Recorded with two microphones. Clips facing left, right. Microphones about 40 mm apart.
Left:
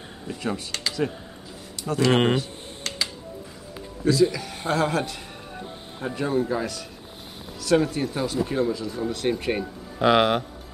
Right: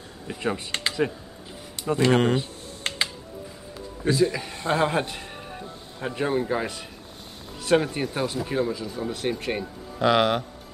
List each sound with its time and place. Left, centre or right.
0.3 s a man's voice: centre
2.8 s music: right
4.0 s a man's voice: right; by 9.3 s centre
9.3 s speech: centre